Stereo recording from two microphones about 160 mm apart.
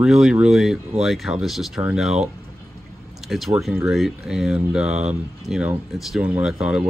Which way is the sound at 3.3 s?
Centre (ahead or behind).